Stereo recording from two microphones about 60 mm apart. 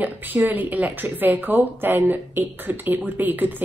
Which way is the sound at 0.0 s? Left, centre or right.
Right.